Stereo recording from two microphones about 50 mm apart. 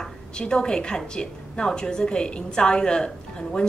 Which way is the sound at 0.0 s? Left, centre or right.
Centre.